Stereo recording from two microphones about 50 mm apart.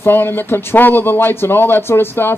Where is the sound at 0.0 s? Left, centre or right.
Left.